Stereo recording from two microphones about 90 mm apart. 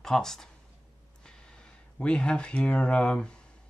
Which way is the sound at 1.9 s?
10° left (ahead or behind).